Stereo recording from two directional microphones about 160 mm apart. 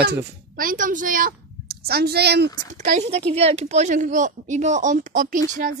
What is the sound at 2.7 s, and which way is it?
A woman's voice, 50° right (ahead or behind).